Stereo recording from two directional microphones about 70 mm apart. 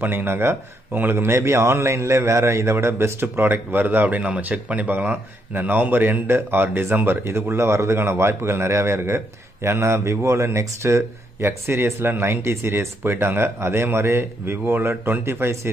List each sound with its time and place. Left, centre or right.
0.0 s speech: right